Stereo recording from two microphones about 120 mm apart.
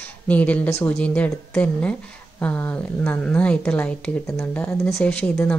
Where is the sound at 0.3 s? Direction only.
10° left (ahead or behind).